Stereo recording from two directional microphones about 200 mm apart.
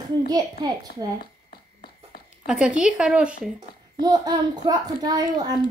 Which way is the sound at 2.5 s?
5° right (ahead or behind).